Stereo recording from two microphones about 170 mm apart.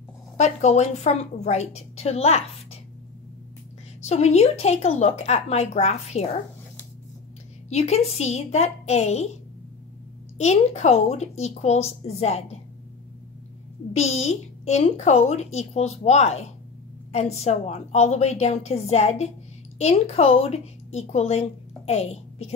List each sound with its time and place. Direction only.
0.4 s a woman's voice: 45° left (ahead or behind)
4.0 s a woman's voice: 40° left (ahead or behind)
7.7 s a woman's voice: 40° left (ahead or behind)
10.3 s a woman's voice: 40° left (ahead or behind)
13.9 s a woman's voice: 40° left (ahead or behind)